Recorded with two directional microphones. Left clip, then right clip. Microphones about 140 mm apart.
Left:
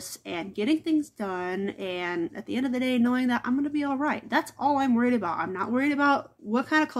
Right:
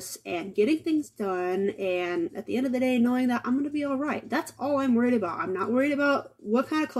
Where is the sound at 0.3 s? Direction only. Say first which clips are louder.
Right 2 dB; 25° left (ahead or behind).